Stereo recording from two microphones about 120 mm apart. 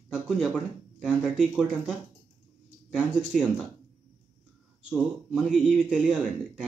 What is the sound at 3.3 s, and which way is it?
Speech, centre (ahead or behind).